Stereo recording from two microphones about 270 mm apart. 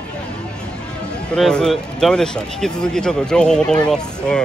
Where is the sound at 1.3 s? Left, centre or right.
Centre.